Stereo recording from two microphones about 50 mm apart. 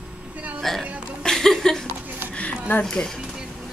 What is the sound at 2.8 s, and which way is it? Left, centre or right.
Speech, centre.